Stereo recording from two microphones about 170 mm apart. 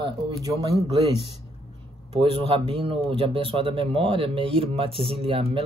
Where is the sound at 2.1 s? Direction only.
30° right (ahead or behind).